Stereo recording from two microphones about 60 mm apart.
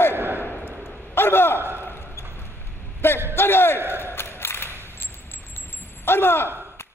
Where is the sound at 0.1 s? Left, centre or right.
Right.